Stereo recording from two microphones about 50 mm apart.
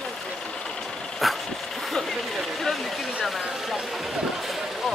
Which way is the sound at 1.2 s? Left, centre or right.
Centre.